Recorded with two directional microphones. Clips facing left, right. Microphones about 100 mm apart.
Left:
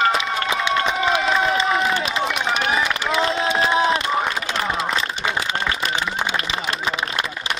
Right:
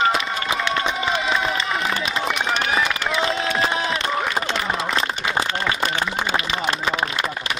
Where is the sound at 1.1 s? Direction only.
Centre (ahead or behind).